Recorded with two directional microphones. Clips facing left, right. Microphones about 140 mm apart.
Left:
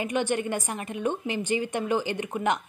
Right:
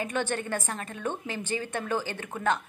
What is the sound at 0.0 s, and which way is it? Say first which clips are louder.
A woman's voice: left 4 dB; 15° left (ahead or behind).